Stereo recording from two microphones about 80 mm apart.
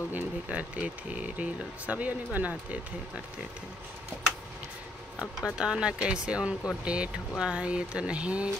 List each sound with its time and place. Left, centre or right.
0.1 s speech: centre
5.6 s speech: centre